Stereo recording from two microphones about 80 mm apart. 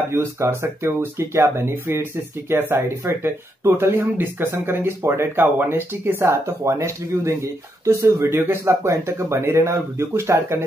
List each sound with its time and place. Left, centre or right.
0.1 s speech: right